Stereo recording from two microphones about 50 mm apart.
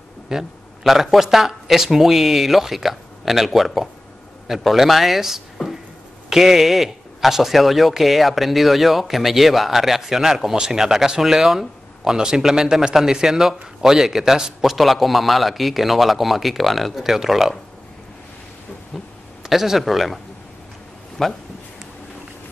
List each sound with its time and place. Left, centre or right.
0.3 s speech: centre
19.4 s speech: centre
21.2 s speech: centre